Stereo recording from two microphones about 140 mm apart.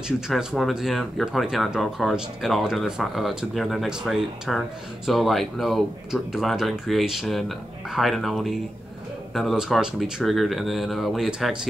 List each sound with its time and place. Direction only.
0.3 s speech: centre (ahead or behind)